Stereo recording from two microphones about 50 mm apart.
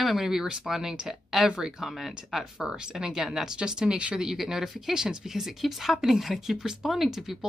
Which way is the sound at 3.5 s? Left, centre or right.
Centre.